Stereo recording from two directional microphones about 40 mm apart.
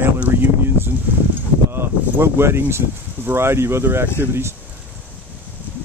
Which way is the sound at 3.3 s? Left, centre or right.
Right.